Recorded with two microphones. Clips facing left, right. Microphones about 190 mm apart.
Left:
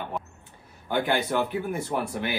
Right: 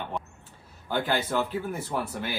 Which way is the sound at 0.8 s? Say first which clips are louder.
Left 2 dB; 20° left (ahead or behind).